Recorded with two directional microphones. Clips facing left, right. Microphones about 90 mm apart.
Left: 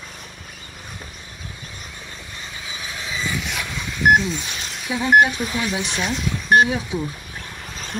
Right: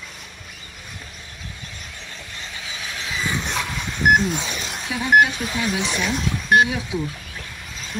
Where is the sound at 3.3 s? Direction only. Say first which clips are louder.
Right 1 dB; 35° right (ahead or behind).